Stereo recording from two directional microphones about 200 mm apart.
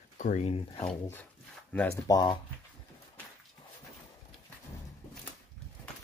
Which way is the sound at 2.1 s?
20° left (ahead or behind).